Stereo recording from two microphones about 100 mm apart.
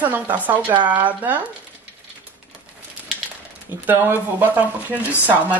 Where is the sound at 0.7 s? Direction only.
50° right (ahead or behind).